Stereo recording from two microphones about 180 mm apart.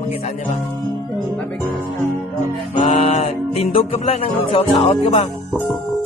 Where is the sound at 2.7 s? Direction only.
40° left (ahead or behind).